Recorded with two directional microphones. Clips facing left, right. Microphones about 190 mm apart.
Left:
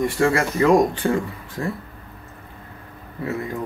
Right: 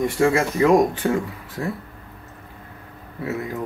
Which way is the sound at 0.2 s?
15° right (ahead or behind).